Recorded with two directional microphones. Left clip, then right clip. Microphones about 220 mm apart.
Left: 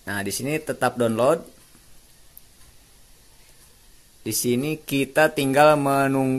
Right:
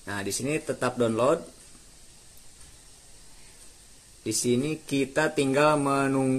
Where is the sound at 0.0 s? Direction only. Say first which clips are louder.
Left 3 dB; 35° left (ahead or behind).